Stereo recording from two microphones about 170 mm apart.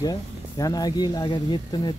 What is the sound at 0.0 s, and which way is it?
Speech, 20° left (ahead or behind).